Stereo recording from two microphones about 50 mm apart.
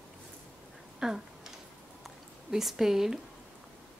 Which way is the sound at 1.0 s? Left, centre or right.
Centre.